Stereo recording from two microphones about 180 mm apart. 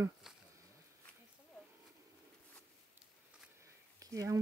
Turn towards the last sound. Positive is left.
turn(degrees=-20)  # may be behind; listen again after turning